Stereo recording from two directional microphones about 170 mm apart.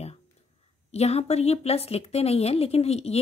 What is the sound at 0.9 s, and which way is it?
Speech, 40° left (ahead or behind).